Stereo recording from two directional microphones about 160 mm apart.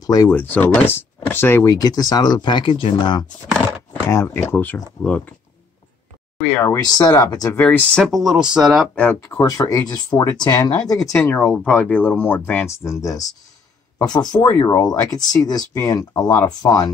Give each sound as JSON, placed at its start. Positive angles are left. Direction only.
{"t": 0.0, "sound": "speech", "side_deg": 25}
{"t": 0.3, "sound": "speech", "side_deg": 10}
{"t": 4.1, "sound": "speech", "side_deg": 15}
{"t": 6.4, "sound": "speech", "side_deg": 15}
{"t": 7.5, "sound": "speech", "side_deg": 10}
{"t": 8.9, "sound": "speech", "side_deg": 15}
{"t": 16.2, "sound": "speech", "side_deg": 10}
{"t": 16.4, "sound": "speech", "side_deg": 25}